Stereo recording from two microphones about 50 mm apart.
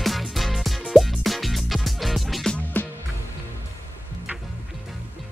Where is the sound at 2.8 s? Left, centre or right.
Left.